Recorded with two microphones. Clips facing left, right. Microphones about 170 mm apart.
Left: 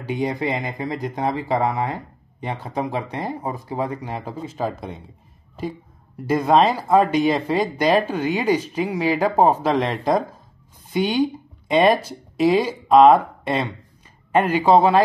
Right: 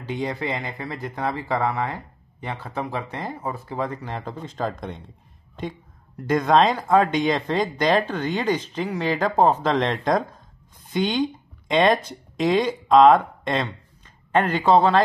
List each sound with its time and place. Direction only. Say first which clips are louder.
0.0 s speech: left 4 dB; 15° left (ahead or behind)
6.2 s speech: left 1 dB; 5° left (ahead or behind)